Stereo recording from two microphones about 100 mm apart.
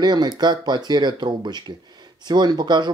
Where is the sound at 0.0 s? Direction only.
45° right (ahead or behind).